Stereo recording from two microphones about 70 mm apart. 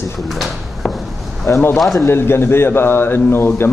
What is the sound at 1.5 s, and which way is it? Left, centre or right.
Speech, left.